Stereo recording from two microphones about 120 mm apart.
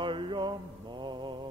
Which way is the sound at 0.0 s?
45° right (ahead or behind).